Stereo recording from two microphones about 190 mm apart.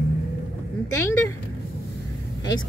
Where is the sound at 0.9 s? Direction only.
15° left (ahead or behind).